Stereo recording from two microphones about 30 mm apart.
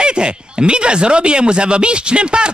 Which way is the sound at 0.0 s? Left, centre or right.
Right.